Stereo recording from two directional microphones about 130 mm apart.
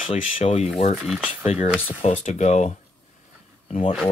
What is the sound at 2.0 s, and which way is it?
Speech, 65° left (ahead or behind).